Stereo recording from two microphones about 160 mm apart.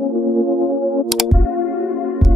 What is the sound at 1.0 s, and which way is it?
Music, centre (ahead or behind).